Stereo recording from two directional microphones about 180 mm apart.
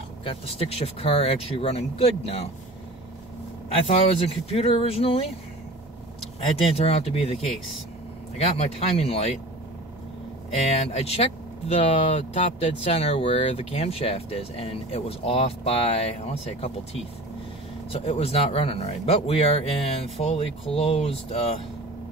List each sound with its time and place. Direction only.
0.2 s speech: 35° left (ahead or behind)
3.8 s speech: 35° left (ahead or behind)
6.7 s speech: 35° left (ahead or behind)
10.6 s speech: 35° left (ahead or behind)